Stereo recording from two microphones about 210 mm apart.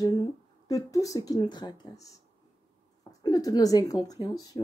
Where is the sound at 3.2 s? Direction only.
15° left (ahead or behind).